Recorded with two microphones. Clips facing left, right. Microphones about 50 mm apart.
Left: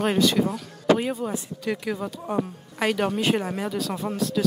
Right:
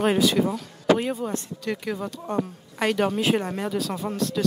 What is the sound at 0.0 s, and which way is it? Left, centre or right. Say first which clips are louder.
Speech: right 1 dB; centre.